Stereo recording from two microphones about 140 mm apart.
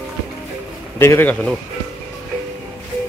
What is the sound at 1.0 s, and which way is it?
Speech, 15° left (ahead or behind).